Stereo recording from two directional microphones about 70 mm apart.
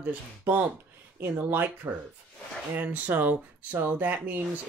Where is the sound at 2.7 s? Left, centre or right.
Right.